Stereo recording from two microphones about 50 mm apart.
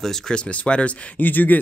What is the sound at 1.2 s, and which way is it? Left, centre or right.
Speech, left.